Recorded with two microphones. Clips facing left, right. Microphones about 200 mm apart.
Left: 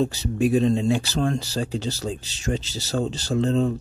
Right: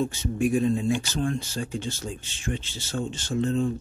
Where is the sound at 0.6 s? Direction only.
85° left.